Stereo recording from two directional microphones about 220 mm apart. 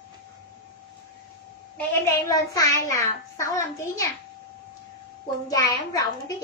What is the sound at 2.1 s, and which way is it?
A child's voice, 15° left (ahead or behind).